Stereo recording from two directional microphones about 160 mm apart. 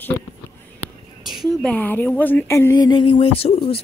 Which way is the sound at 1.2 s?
Centre (ahead or behind).